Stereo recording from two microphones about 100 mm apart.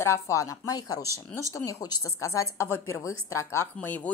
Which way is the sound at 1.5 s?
35° left (ahead or behind).